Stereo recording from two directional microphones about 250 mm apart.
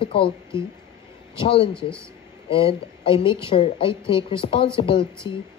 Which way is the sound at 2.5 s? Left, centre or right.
Left.